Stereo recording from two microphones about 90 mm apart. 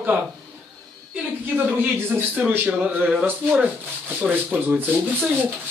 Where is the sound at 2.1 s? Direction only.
20° right (ahead or behind).